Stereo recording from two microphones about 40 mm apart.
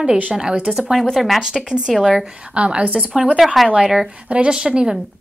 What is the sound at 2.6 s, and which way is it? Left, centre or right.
Speech, right.